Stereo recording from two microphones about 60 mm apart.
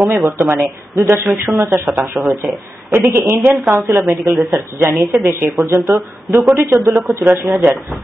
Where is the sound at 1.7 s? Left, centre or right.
Right.